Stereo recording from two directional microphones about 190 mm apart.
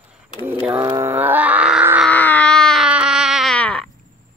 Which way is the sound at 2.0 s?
10° left (ahead or behind).